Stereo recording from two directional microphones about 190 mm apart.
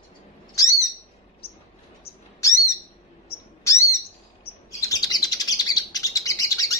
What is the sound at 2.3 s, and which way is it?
Owl, 15° left (ahead or behind).